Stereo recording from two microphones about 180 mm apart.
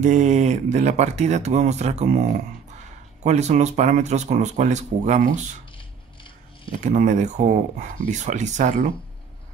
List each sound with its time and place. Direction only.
0.0 s speech: 40° right (ahead or behind)
3.3 s speech: 40° right (ahead or behind)
6.7 s speech: 45° right (ahead or behind)